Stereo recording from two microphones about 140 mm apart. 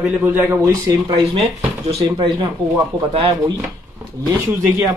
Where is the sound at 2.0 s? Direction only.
30° right (ahead or behind).